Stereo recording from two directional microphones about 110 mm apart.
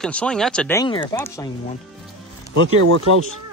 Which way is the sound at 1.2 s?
25° left (ahead or behind).